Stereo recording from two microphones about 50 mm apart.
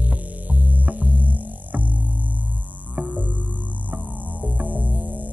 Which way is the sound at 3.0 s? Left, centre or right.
Right.